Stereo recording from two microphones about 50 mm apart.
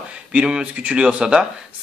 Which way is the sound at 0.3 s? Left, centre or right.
Centre.